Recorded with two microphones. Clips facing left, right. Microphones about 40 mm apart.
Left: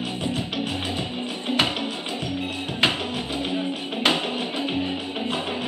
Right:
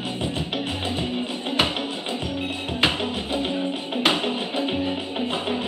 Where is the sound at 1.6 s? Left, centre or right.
Centre.